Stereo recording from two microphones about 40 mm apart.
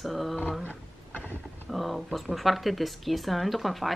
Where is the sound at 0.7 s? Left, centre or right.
Left.